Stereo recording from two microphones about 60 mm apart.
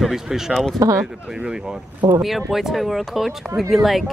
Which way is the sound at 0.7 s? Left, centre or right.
Right.